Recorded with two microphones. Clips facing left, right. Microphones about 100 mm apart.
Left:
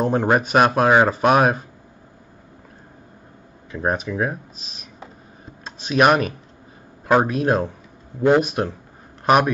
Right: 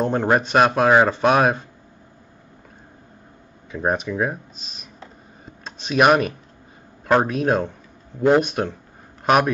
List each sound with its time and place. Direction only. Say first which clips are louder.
0.0 s speech: left 1 dB; 5° left (ahead or behind)
3.7 s speech: even; centre (ahead or behind)
5.4 s a sound: even; centre (ahead or behind)
7.1 s speech: left 1 dB; centre (ahead or behind)